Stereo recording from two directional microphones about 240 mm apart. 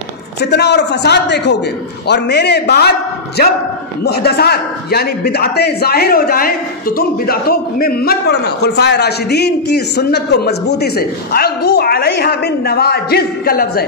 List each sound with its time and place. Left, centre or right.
0.4 s a man's voice: left